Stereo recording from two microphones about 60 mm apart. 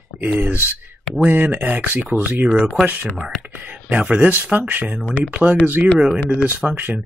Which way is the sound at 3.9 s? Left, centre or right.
Centre.